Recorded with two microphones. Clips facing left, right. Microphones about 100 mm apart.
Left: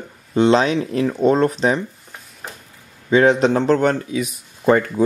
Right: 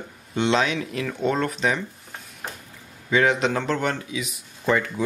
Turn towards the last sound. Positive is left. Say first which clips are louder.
# left 7 dB
turn(degrees=45)  # may be behind; listen again after turning